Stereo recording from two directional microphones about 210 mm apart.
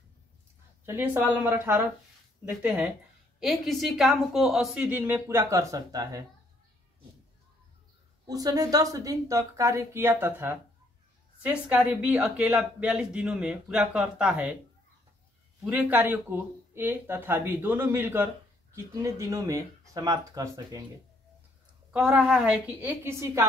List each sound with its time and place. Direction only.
0.8 s speech: 10° right (ahead or behind)
8.3 s speech: 15° right (ahead or behind)
15.6 s speech: 5° right (ahead or behind)
21.9 s speech: 5° right (ahead or behind)